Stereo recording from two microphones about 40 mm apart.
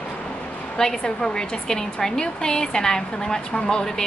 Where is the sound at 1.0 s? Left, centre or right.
Centre.